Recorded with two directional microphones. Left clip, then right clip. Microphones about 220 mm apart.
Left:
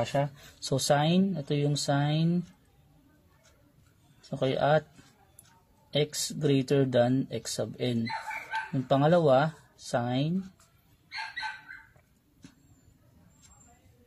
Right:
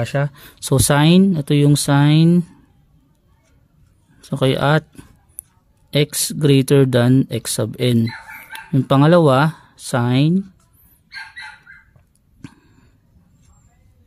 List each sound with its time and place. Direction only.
0.0 s speech: 30° right (ahead or behind)
4.2 s speech: 30° right (ahead or behind)
5.9 s speech: 30° right (ahead or behind)